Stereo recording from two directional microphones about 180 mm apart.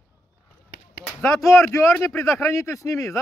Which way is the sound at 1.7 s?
15° left (ahead or behind).